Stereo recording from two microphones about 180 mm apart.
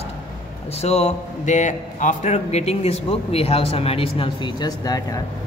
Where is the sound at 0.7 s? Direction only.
35° left (ahead or behind).